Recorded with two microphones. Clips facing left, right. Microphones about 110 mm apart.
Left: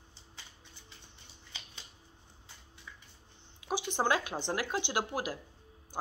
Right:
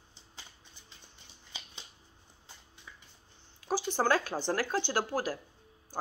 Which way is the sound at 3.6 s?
20° left (ahead or behind).